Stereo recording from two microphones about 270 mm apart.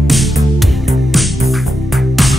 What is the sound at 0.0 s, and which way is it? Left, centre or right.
Music, centre.